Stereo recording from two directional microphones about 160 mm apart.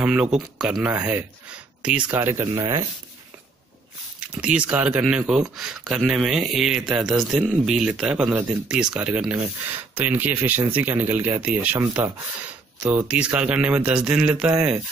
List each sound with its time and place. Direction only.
0.0 s speech: 10° right (ahead or behind)
4.2 s speech: 10° right (ahead or behind)